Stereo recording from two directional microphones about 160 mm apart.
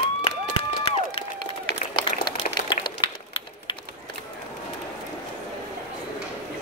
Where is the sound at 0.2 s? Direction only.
30° left (ahead or behind).